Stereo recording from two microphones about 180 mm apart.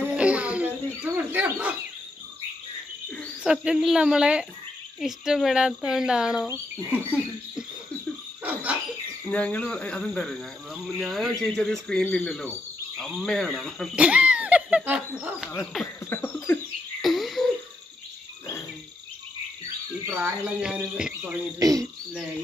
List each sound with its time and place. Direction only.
0.0 s bird: 5° right (ahead or behind)
3.4 s speech: 5° right (ahead or behind)
6.5 s frog: 10° right (ahead or behind)
9.3 s speech: 5° left (ahead or behind)
12.9 s laughter: centre (ahead or behind)
15.5 s a sound: 5° left (ahead or behind)
17.0 s a sound: centre (ahead or behind)
20.1 s speech: 5° right (ahead or behind)
21.5 s speech: 20° right (ahead or behind)